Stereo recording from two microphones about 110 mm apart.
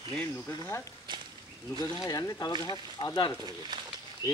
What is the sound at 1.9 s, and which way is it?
Speech, 30° left (ahead or behind).